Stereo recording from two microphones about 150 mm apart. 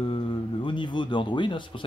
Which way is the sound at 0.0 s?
35° left (ahead or behind).